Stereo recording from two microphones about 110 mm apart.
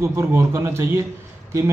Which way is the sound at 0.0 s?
25° right (ahead or behind).